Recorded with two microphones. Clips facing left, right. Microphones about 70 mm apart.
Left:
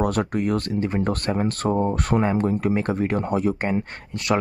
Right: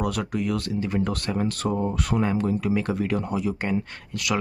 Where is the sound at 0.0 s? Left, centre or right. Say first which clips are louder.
Left 4 dB; left.